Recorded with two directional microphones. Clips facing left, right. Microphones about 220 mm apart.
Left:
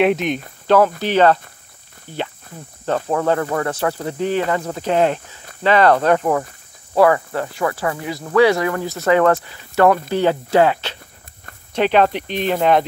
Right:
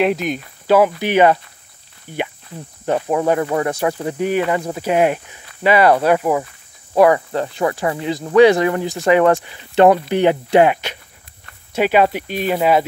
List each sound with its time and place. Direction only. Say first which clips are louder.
0.0 s speech: left 1 dB; centre (ahead or behind)
0.7 s speech: right 1 dB; 10° right (ahead or behind)